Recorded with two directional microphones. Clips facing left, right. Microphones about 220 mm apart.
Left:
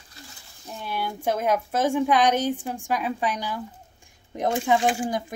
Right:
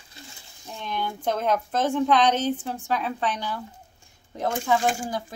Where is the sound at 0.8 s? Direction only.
10° left (ahead or behind).